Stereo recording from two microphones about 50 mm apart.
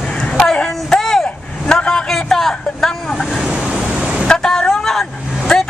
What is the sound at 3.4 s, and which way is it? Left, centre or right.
Vehicle, centre.